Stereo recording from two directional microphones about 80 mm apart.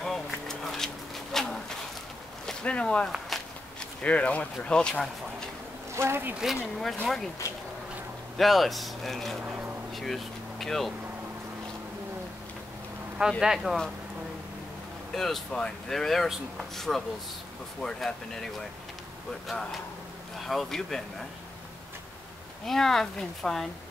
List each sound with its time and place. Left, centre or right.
0.0 s a sound: centre
2.4 s speech: centre
5.9 s speech: right
6.4 s speech: centre
8.4 s speech: centre
9.4 s a sound: centre
9.9 s vehicle: centre
13.4 s speech: centre
15.1 s speech: centre
22.7 s speech: centre